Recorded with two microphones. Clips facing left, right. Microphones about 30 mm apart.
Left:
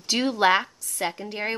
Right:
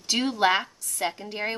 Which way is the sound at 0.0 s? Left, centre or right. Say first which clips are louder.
Left 2 dB; centre.